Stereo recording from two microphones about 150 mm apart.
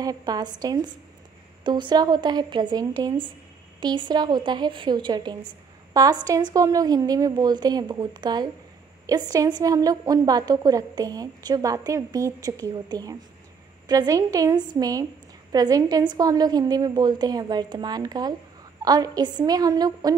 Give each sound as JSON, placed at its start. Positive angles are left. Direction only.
{"t": 0.0, "sound": "a woman's voice", "side_deg": -25}